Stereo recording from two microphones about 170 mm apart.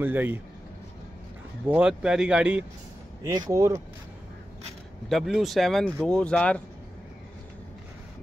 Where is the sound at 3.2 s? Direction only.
20° right (ahead or behind).